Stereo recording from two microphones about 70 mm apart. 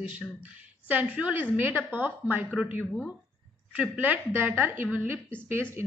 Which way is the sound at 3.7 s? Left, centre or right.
Right.